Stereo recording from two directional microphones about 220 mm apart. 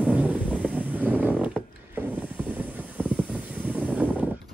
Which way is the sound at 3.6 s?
5° right (ahead or behind).